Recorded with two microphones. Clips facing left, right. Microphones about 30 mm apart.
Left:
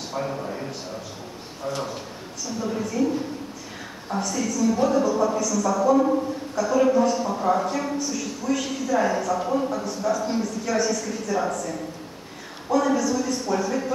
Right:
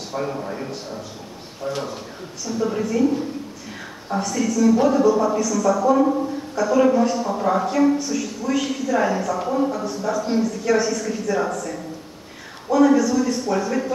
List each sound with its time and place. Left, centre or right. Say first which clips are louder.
0.1 s a man's voice: right 3 dB; centre
2.6 s a man's voice: right 5 dB; centre
4.1 s a man's voice: right 4 dB; centre
12.7 s a man's voice: right 5 dB; centre